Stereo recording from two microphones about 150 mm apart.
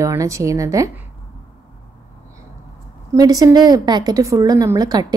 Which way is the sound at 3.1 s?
25° right (ahead or behind).